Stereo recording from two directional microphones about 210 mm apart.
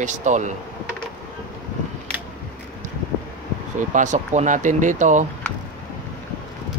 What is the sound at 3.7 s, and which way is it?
Speech, 35° right (ahead or behind).